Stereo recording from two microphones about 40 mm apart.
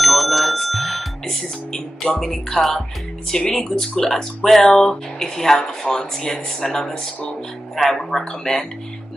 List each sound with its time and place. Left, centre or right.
0.0 s music: centre
2.1 s speech: centre